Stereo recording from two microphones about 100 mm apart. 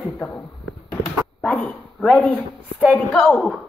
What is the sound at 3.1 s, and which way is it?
Speech, 5° left (ahead or behind).